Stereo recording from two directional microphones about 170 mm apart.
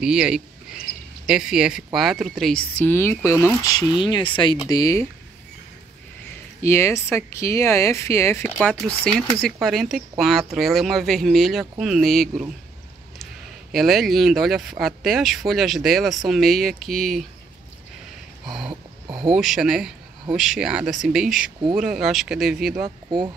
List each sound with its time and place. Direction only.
0.0 s speech: 5° right (ahead or behind); by 3.2 s 15° left (ahead or behind)
4.0 s speech: 30° left (ahead or behind)
6.6 s speech: 15° left (ahead or behind); by 12.4 s centre (ahead or behind)
13.7 s speech: centre (ahead or behind)
18.7 s a sound: 25° right (ahead or behind)
19.2 s speech: centre (ahead or behind)
23.0 s speech: 25° right (ahead or behind)